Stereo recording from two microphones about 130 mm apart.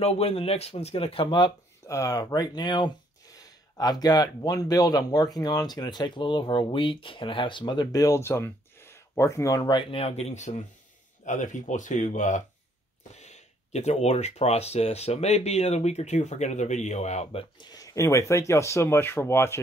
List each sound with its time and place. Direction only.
0.0 s speech: 50° left (ahead or behind)
1.9 s speech: 25° left (ahead or behind); by 10.5 s 60° left (ahead or behind)
11.2 s speech: 75° left (ahead or behind)
13.1 s speech: 60° left (ahead or behind)
17.6 s speech: 30° left (ahead or behind)